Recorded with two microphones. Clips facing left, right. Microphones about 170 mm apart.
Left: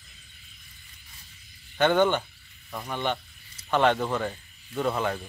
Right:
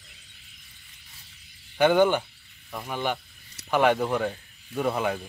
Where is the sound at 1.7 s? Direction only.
10° right (ahead or behind).